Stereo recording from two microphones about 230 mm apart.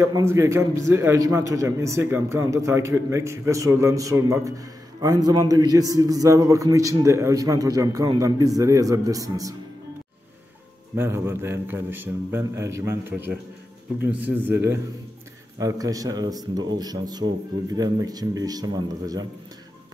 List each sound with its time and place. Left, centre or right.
0.0 s a man's voice: centre
11.0 s a man's voice: centre